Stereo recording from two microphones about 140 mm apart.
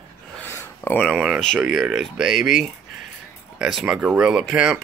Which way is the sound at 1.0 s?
Centre (ahead or behind).